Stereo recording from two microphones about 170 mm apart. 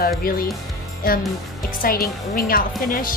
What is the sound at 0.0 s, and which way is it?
Speech, 60° left (ahead or behind).